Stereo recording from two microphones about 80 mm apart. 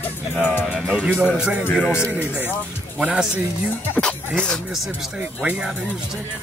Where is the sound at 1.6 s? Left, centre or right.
Centre.